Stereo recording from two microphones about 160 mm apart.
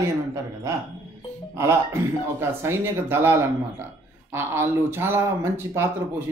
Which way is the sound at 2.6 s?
15° right (ahead or behind).